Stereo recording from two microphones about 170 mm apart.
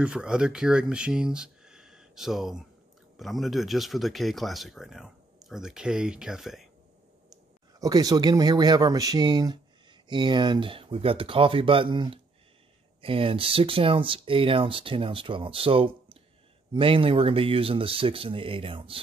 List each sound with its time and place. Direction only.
0.0 s speech: 5° right (ahead or behind)
7.8 s speech: 20° right (ahead or behind)